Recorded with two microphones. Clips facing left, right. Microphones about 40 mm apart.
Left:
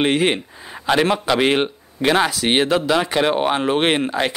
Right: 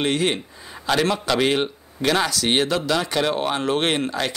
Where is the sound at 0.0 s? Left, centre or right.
Left.